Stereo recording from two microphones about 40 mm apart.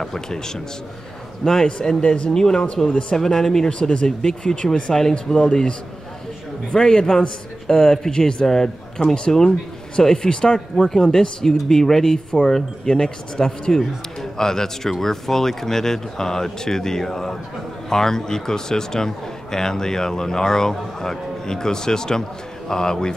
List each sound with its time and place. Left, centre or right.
0.0 s a man's voice: centre
2.9 s speech: left
3.2 s a man's voice: centre
4.9 s a man's voice: centre
5.3 s a man's voice: centre